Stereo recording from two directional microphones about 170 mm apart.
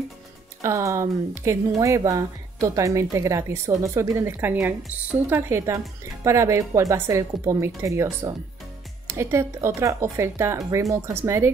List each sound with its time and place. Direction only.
0.6 s speech: 15° right (ahead or behind)